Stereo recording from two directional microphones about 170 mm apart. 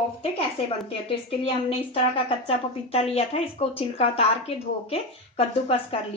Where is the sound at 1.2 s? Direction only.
35° left (ahead or behind).